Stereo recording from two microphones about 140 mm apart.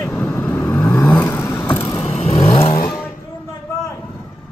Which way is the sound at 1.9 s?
45° left (ahead or behind).